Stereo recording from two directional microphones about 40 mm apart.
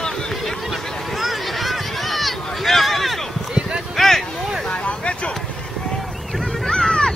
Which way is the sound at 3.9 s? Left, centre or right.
Centre.